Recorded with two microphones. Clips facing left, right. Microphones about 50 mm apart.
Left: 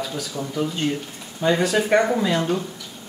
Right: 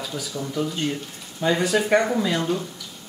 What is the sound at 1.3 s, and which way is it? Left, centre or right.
Speech, centre.